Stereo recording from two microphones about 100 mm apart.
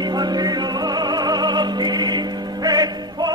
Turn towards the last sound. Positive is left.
turn(degrees=-45)  # may be behind; listen again after turning